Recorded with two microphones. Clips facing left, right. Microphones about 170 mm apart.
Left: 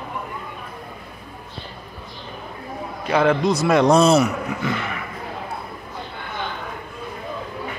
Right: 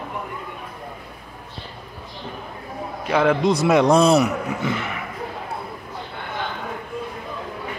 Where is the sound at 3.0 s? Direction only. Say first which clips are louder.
Even; centre (ahead or behind).